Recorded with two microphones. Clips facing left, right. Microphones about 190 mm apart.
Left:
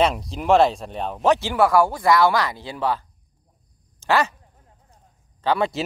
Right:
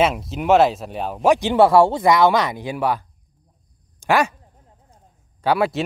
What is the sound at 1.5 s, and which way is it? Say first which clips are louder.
Speech: right 4 dB; 25° right (ahead or behind).